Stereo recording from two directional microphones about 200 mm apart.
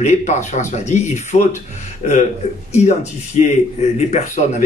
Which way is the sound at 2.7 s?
35° left (ahead or behind).